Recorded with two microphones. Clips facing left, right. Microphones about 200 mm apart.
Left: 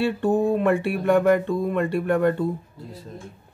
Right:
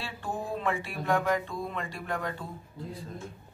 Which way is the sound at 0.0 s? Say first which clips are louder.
Left 15 dB; 60° left (ahead or behind).